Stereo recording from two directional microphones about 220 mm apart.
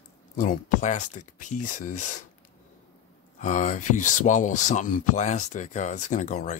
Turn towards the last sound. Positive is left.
turn(degrees=35)  # may be behind; listen again after turning